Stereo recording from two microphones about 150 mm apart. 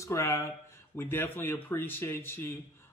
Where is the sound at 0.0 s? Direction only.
20° left (ahead or behind).